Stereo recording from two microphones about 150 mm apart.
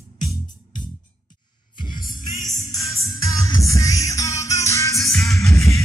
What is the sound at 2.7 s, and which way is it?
Music, 20° left (ahead or behind).